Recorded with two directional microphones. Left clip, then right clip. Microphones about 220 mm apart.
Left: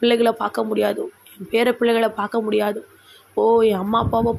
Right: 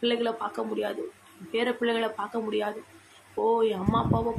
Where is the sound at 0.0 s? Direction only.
30° left (ahead or behind).